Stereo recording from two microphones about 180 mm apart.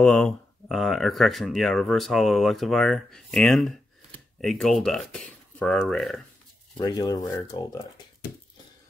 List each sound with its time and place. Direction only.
0.0 s speech: 5° left (ahead or behind)
6.8 s speech: 20° left (ahead or behind)